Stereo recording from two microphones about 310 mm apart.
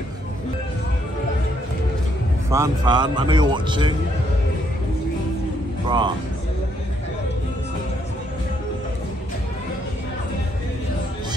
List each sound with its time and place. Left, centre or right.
2.5 s a man's voice: centre
5.9 s speech: centre